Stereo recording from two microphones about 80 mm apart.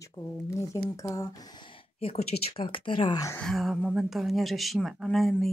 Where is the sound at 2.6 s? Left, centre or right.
Left.